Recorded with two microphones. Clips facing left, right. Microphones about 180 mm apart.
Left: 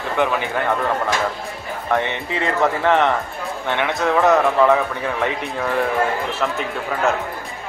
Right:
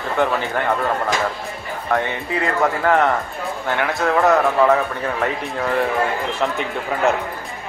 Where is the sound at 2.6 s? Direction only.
5° right (ahead or behind).